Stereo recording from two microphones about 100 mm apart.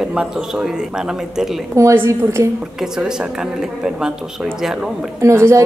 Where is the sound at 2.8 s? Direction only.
5° right (ahead or behind).